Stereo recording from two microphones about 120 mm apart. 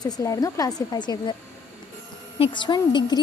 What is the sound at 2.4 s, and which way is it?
Speech, 40° left (ahead or behind).